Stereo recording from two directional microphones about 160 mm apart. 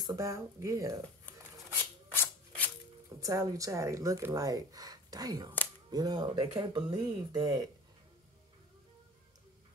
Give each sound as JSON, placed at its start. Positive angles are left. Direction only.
{"t": 0.0, "sound": "speech", "side_deg": -20}
{"t": 2.0, "sound": "rub", "side_deg": 10}
{"t": 3.2, "sound": "speech", "side_deg": -20}